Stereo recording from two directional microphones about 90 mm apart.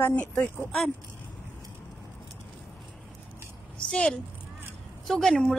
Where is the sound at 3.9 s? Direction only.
10° left (ahead or behind).